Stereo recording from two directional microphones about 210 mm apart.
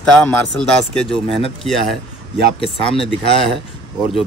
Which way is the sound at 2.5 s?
25° left (ahead or behind).